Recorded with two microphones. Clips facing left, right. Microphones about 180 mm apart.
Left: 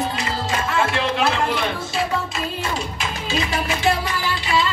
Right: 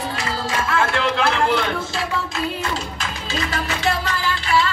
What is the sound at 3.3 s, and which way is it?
Music, 15° left (ahead or behind).